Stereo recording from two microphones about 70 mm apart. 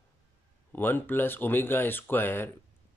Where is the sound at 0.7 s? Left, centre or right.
Left.